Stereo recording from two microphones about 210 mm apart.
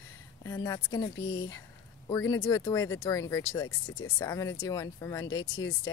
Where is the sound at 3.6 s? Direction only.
75° left (ahead or behind).